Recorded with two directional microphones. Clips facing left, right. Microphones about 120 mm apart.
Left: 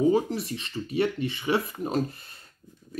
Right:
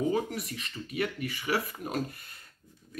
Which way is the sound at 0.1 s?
30° left (ahead or behind).